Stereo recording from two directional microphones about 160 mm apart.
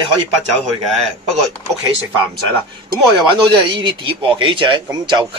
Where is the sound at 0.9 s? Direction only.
Centre (ahead or behind).